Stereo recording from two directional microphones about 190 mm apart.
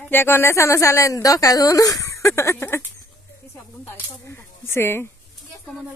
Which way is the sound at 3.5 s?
15° left (ahead or behind).